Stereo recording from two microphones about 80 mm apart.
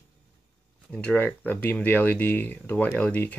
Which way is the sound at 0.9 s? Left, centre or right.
Left.